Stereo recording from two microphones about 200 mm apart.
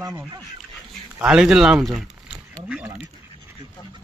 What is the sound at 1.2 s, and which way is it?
Speech, 5° right (ahead or behind).